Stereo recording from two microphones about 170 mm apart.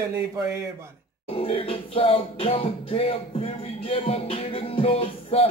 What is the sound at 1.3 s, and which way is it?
Music, 35° left (ahead or behind).